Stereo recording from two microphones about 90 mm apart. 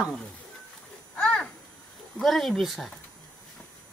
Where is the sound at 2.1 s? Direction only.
Centre (ahead or behind).